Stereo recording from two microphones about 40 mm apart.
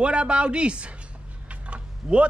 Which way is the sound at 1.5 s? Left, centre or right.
Right.